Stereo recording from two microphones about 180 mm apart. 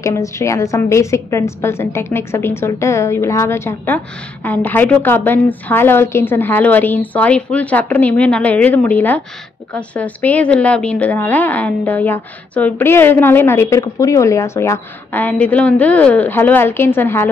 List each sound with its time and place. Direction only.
0.0 s a woman's voice: 15° left (ahead or behind)